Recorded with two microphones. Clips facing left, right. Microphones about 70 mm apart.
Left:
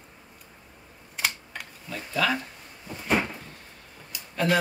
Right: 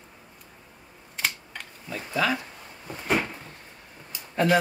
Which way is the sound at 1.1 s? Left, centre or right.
Centre.